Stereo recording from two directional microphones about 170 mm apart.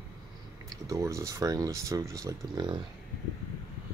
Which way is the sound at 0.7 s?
20° right (ahead or behind).